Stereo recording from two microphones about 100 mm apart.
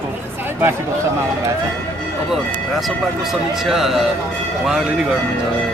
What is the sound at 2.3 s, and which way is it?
Speech, centre (ahead or behind).